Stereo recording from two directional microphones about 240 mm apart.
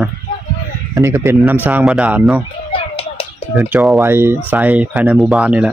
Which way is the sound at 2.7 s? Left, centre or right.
Left.